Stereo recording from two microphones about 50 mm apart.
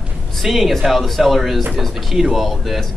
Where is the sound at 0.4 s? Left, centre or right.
Centre.